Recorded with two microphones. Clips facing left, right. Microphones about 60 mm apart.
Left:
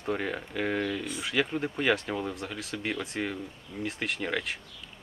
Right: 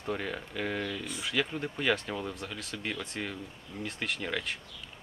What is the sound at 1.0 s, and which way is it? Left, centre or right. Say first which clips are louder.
Speech: left 3 dB; centre.